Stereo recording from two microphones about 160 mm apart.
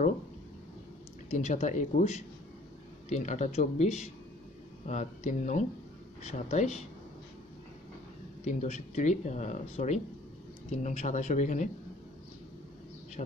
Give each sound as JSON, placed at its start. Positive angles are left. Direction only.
{"t": 1.3, "sound": "speech", "side_deg": 50}
{"t": 8.5, "sound": "speech", "side_deg": 45}